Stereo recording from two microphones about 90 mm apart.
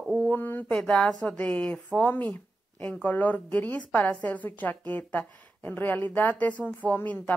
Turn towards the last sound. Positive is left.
turn(degrees=20)  # may be behind; listen again after turning